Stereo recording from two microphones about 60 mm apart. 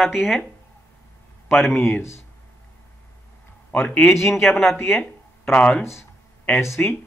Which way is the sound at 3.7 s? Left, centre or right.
Left.